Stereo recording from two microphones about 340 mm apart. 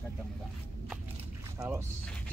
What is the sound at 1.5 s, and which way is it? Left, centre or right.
Speech, centre.